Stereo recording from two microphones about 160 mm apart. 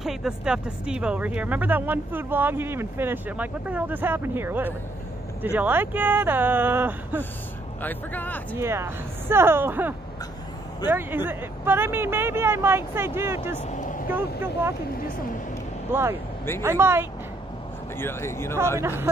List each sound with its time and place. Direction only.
0.0 s speech: centre (ahead or behind)
7.8 s speech: 10° left (ahead or behind)
8.5 s speech: 15° right (ahead or behind)
13.7 s vehicle: 50° left (ahead or behind)
14.1 s speech: 15° right (ahead or behind)
15.9 s speech: 15° right (ahead or behind)
17.9 s speech: 15° left (ahead or behind)
18.8 s speech: 15° right (ahead or behind)